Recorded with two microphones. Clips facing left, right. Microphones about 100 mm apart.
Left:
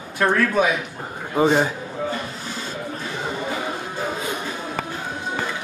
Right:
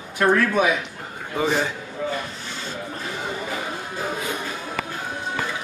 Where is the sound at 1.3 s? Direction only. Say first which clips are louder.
Left 5 dB; 30° left (ahead or behind).